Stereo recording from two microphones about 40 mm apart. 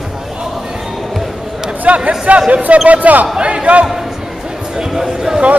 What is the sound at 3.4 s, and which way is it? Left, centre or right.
Speech, right.